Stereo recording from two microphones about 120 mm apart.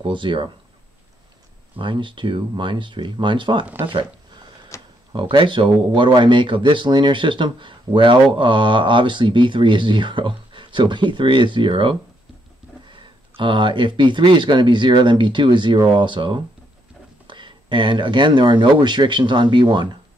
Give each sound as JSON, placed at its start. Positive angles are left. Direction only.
{"t": 0.0, "sound": "speech", "side_deg": -45}
{"t": 1.8, "sound": "speech", "side_deg": -45}
{"t": 4.7, "sound": "a sound", "side_deg": 25}
{"t": 5.3, "sound": "speech", "side_deg": -45}